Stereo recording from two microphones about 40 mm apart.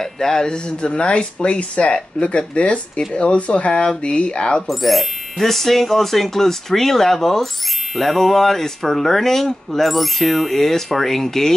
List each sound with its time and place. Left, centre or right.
0.0 s speech: centre
4.6 s speech: centre